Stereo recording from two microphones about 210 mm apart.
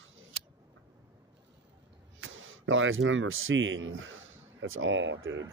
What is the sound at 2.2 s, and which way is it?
Speech, 65° right (ahead or behind).